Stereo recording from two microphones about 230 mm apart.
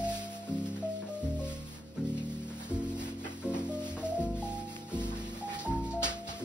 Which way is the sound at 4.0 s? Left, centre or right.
Centre.